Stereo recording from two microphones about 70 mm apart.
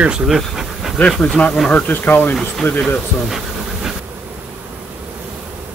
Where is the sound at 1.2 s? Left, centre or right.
Centre.